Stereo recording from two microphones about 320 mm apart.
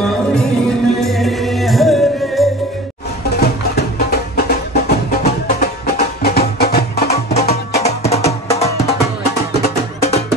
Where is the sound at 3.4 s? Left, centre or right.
Left; by 9.0 s centre.